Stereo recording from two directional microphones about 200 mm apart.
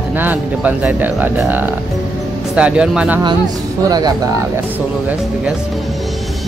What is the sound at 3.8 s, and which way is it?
Speech, 20° right (ahead or behind).